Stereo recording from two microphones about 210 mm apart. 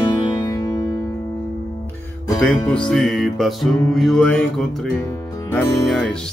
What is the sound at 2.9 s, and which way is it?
Music, centre (ahead or behind).